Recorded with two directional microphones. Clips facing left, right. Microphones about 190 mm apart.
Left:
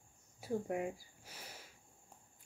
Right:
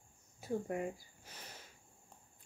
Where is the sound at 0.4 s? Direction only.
10° left (ahead or behind).